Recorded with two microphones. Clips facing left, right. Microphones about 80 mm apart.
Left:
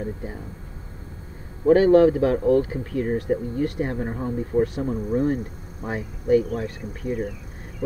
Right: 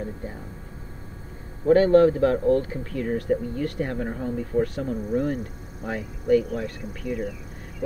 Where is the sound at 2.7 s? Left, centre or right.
Left.